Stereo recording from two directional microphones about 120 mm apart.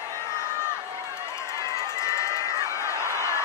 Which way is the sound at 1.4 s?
25° left (ahead or behind).